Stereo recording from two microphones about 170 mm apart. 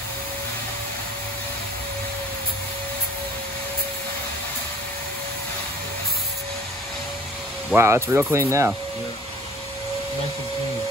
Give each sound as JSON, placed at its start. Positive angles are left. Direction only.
{"t": 7.7, "sound": "speech", "side_deg": -15}